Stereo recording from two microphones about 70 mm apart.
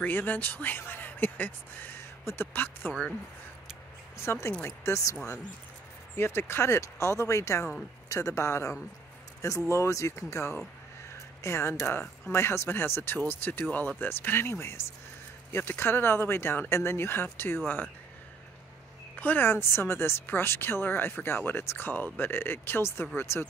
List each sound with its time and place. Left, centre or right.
0.0 s speech: left
4.2 s speech: left
5.1 s speech: left
19.1 s speech: left